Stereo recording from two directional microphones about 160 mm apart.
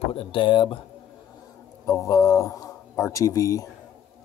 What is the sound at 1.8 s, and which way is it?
A man's voice, 20° left (ahead or behind).